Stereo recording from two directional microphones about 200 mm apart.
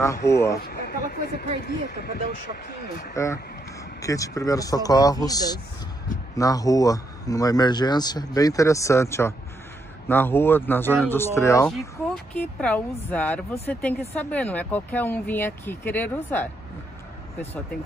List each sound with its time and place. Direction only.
0.0 s a woman's voice: 15° left (ahead or behind)
0.6 s speech: 50° left (ahead or behind)
4.0 s a woman's voice: 15° left (ahead or behind)